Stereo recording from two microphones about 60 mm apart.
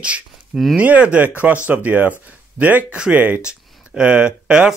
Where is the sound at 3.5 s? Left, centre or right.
Centre.